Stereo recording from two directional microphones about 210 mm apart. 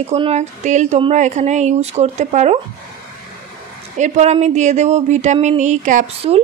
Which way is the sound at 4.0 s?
30° right (ahead or behind).